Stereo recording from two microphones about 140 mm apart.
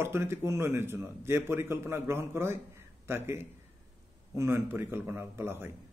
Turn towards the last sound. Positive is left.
turn(degrees=-15)  # may be behind; listen again after turning